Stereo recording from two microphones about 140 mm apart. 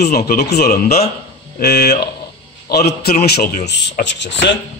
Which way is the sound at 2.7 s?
90° left.